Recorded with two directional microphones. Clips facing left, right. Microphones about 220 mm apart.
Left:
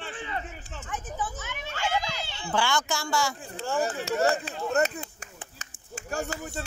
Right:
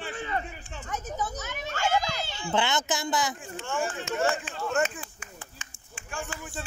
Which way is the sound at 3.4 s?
35° left (ahead or behind).